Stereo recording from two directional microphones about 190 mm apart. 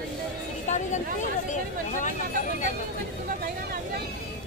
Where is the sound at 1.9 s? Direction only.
40° left (ahead or behind).